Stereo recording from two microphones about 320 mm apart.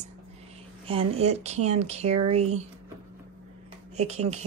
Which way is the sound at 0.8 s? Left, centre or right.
Centre.